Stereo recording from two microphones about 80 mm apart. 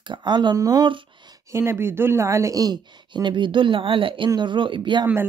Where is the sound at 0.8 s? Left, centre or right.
Right.